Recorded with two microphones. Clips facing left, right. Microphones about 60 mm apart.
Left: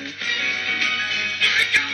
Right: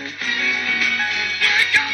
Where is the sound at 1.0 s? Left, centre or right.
Right.